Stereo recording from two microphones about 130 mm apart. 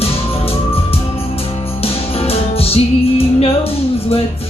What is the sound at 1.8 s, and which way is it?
Music, 50° left (ahead or behind).